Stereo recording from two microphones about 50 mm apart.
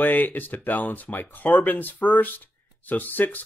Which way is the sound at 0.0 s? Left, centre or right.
Left.